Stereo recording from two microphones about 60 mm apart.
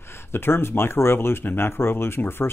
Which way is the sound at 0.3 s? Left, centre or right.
Left.